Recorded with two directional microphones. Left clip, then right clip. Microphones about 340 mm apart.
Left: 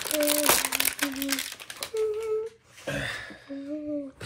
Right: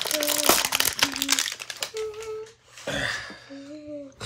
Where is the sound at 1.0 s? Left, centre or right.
Right.